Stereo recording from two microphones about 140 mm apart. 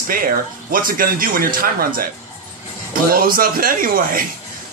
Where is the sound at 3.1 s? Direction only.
90° right.